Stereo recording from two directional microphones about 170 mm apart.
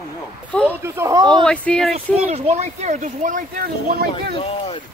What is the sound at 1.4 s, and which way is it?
Speech, 5° left (ahead or behind).